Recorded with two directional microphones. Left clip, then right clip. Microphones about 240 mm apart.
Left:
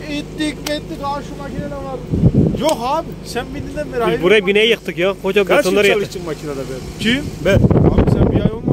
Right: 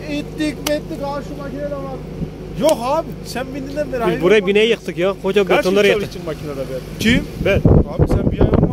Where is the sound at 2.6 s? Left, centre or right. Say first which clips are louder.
Right 5 dB; centre.